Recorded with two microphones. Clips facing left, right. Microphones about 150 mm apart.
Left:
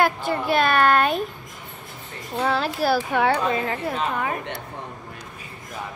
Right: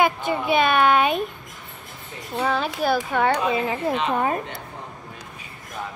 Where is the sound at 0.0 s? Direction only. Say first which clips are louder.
Right 1 dB; centre (ahead or behind).